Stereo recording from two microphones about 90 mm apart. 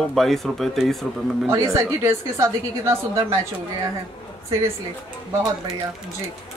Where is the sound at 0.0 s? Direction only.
5° left (ahead or behind).